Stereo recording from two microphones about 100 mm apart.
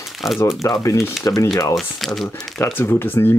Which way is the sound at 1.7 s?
Centre (ahead or behind).